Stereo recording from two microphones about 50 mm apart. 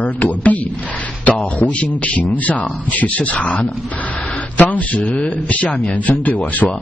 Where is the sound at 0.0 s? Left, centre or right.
Left.